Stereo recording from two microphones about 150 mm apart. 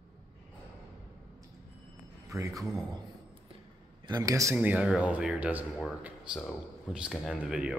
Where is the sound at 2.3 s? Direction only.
20° right (ahead or behind).